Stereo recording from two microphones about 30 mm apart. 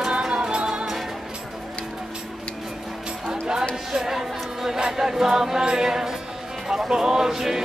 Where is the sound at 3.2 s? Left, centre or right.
Right.